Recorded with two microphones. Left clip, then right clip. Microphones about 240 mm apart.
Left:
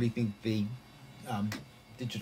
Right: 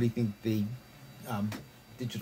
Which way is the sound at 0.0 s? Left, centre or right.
Centre.